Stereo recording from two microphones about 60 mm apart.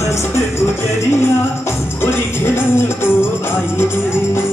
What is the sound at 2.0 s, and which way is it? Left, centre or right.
Music, left.